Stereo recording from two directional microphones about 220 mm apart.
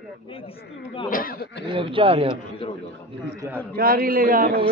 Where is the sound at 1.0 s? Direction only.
40° left (ahead or behind).